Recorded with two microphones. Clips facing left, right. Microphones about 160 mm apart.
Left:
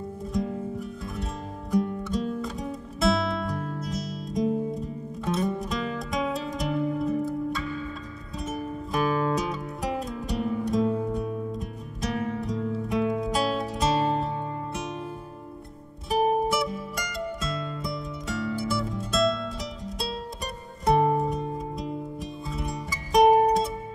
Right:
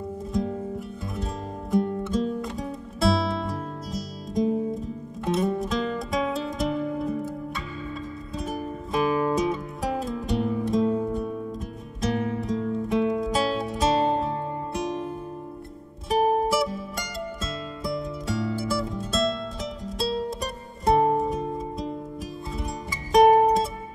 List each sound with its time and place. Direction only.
0.3 s music: centre (ahead or behind)
3.0 s music: 30° right (ahead or behind)
3.4 s music: centre (ahead or behind)
8.4 s music: centre (ahead or behind)
16.1 s music: centre (ahead or behind)
21.2 s music: centre (ahead or behind)